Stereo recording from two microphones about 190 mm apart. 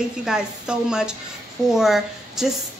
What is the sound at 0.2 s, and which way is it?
Speech, 5° right (ahead or behind).